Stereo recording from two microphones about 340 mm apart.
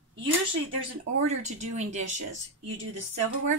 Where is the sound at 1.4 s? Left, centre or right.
Centre.